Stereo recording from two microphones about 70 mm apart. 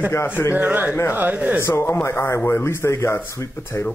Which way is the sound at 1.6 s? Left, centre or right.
Left.